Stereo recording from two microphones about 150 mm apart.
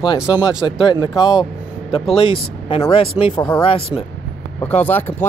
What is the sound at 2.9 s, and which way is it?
Speech, 40° left (ahead or behind).